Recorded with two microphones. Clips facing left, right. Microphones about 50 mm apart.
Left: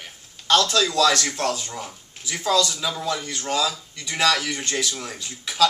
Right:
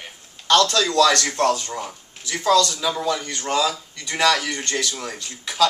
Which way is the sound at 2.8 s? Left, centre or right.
Centre.